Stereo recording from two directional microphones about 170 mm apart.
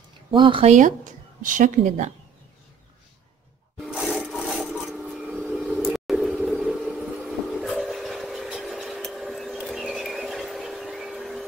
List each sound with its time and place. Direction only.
0.3 s speech: 30° right (ahead or behind)
0.7 s speech: 50° right (ahead or behind)
3.7 s wood: centre (ahead or behind)